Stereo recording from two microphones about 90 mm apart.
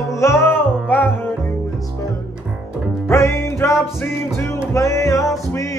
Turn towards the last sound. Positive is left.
turn(degrees=35)  # may be behind; listen again after turning